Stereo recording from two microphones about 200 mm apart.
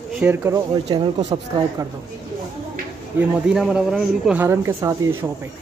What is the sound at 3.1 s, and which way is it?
Speech, 10° right (ahead or behind).